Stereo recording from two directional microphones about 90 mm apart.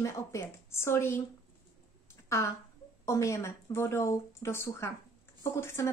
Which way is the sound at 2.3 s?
30° left (ahead or behind).